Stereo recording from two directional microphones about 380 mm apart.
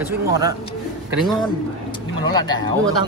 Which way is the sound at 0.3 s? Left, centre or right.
Centre.